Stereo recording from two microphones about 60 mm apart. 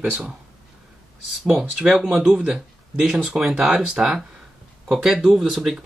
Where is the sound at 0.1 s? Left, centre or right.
Centre.